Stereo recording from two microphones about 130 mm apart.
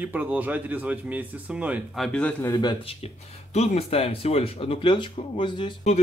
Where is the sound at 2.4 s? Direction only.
30° left (ahead or behind).